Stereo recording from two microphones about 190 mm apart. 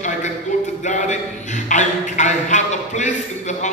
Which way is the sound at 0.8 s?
40° left (ahead or behind).